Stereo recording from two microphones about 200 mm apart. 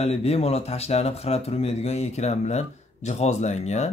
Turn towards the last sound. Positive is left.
turn(degrees=35)  # may be behind; listen again after turning